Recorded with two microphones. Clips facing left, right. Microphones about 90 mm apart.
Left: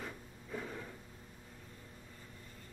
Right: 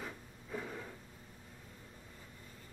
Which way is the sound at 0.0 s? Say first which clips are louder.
Even; 5° right (ahead or behind).